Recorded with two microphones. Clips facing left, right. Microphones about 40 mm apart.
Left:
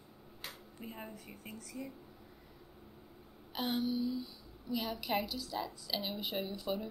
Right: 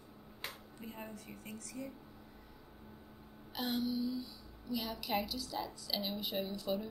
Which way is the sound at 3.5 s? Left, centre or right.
Centre.